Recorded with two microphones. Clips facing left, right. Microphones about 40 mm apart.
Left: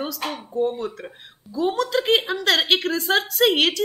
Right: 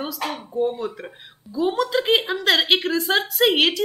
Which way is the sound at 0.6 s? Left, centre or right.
Centre.